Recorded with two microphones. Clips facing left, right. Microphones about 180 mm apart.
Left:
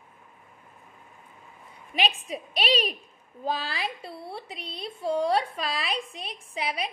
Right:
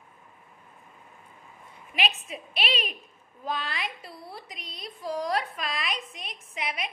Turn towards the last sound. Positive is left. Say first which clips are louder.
# left 3 dB
turn(degrees=30)  # may be behind; listen again after turning